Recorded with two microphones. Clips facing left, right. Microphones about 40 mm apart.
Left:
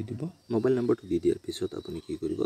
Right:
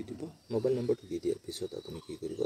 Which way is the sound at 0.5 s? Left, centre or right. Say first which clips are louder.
Left 5 dB; left.